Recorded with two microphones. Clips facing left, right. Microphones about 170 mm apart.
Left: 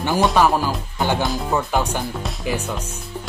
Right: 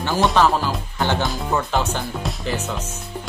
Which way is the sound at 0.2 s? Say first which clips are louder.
Even; 5° left (ahead or behind).